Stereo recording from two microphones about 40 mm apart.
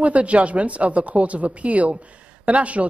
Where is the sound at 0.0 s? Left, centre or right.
Right.